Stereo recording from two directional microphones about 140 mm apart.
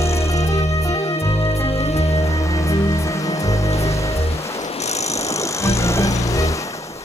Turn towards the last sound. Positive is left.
turn(degrees=20)  # may be behind; listen again after turning